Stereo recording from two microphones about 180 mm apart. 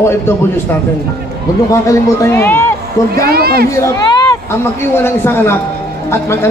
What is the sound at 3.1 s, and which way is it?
Speech, 60° right (ahead or behind).